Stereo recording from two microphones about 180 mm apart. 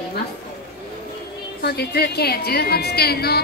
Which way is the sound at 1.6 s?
65° left (ahead or behind).